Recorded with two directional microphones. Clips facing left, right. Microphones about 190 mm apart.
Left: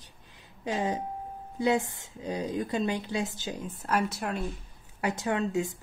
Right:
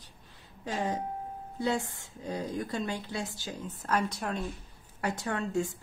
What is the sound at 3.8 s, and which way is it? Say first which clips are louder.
A woman's voice: left 1 dB; 10° left (ahead or behind).